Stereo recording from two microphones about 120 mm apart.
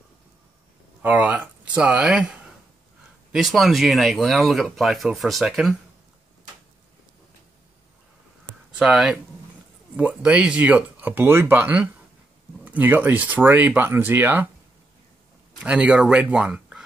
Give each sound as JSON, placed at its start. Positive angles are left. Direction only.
{"t": 1.0, "sound": "speech", "side_deg": -15}
{"t": 3.3, "sound": "speech", "side_deg": 0}
{"t": 8.7, "sound": "speech", "side_deg": -5}
{"t": 15.6, "sound": "speech", "side_deg": -10}